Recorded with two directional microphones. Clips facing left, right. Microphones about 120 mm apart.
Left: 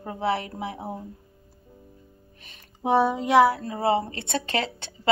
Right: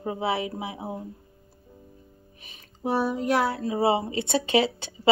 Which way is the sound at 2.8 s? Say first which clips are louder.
Left 4 dB; 25° left (ahead or behind).